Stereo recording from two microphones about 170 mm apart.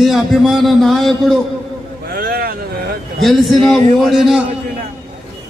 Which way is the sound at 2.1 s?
60° right (ahead or behind).